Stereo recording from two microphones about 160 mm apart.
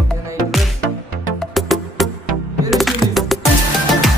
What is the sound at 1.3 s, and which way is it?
Music, centre (ahead or behind).